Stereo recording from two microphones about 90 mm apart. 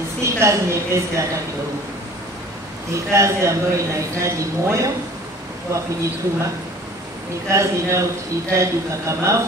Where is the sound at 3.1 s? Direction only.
35° right (ahead or behind).